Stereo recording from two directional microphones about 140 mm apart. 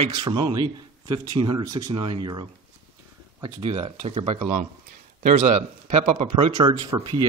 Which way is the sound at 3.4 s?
40° right (ahead or behind).